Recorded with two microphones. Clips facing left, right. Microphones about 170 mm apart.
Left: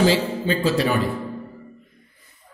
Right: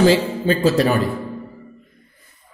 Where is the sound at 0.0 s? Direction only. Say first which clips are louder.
Right 4 dB; 45° right (ahead or behind).